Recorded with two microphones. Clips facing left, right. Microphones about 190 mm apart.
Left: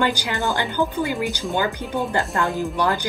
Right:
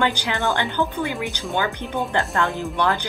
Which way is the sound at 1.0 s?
Centre (ahead or behind).